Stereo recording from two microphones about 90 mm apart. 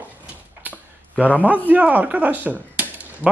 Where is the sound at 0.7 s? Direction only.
15° right (ahead or behind).